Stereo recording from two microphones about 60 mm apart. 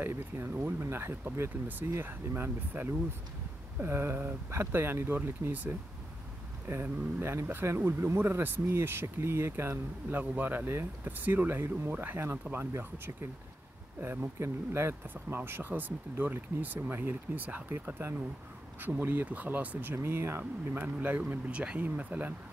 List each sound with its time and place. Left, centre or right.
0.0 s speech: right
18.8 s speech: right
20.0 s speech: right
20.7 s speech: right